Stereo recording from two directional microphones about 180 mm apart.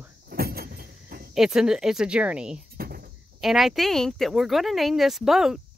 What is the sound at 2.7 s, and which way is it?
Cricket, 55° right (ahead or behind).